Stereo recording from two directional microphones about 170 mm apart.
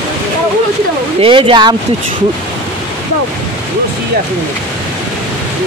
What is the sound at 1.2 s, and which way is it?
Speech, 30° right (ahead or behind).